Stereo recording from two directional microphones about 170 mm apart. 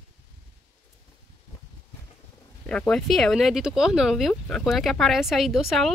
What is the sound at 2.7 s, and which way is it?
Speech, 5° left (ahead or behind).